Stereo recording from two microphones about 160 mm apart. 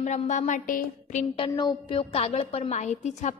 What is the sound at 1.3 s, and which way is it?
A woman's voice, 35° left (ahead or behind).